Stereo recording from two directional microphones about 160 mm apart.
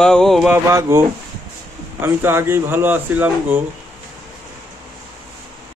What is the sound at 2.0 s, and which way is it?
Speech, 15° right (ahead or behind).